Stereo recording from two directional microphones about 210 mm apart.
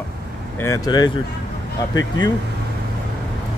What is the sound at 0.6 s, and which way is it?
Speech, 15° left (ahead or behind).